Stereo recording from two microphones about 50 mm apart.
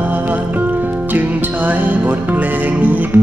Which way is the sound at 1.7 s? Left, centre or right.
Right.